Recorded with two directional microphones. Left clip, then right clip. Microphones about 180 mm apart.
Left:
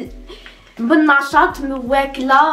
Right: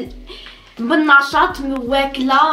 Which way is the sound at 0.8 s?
25° left (ahead or behind).